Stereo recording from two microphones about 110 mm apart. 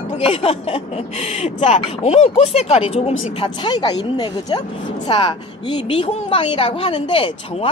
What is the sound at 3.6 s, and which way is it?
A woman's voice, 40° left (ahead or behind).